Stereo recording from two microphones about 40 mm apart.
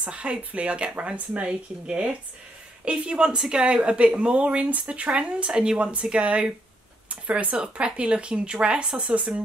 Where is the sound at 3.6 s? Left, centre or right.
Right.